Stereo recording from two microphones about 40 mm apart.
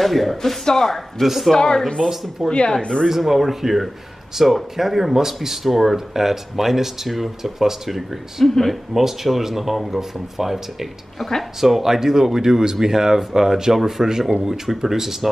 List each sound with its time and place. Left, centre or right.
0.0 s speech: centre
1.2 s speech: centre
1.5 s speech: centre
2.4 s speech: centre
2.8 s speech: left
3.2 s speech: centre
8.5 s speech: centre
8.9 s speech: centre